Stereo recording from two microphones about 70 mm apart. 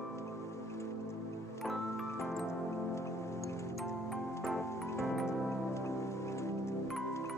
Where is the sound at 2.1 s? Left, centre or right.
Left.